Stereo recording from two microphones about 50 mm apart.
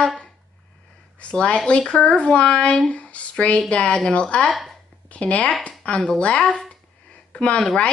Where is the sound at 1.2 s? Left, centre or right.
Left.